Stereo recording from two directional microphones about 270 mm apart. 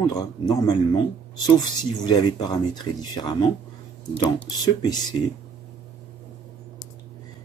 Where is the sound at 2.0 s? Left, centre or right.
Centre.